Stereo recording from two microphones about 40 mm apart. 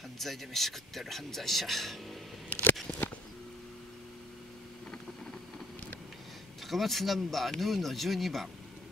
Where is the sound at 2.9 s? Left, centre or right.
Left.